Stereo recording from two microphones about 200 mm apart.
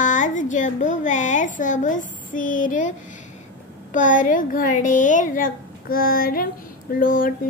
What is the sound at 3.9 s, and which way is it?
A woman's voice, 40° left (ahead or behind).